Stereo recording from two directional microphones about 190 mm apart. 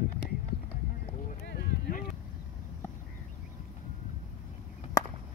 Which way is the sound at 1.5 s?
50° left (ahead or behind).